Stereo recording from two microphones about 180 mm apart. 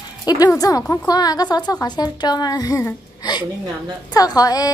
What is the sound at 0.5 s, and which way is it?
A woman's voice, 20° left (ahead or behind).